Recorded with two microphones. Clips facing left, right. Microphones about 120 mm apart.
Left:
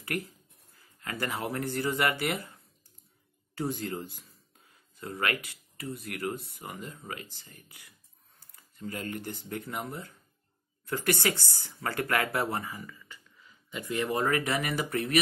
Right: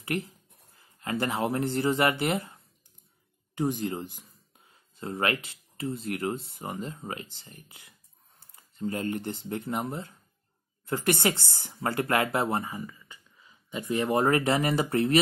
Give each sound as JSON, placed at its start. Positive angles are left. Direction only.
{"t": 0.0, "sound": "speech", "side_deg": -25}
{"t": 3.5, "sound": "speech", "side_deg": -20}